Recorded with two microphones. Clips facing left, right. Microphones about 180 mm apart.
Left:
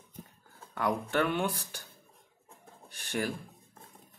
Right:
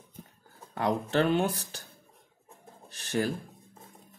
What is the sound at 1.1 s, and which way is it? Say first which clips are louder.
Speech: right 6 dB; 25° right (ahead or behind).